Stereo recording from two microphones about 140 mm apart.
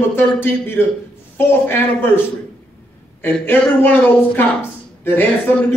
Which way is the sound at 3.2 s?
15° left (ahead or behind).